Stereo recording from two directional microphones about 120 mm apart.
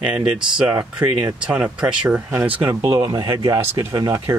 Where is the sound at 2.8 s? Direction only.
45° right (ahead or behind).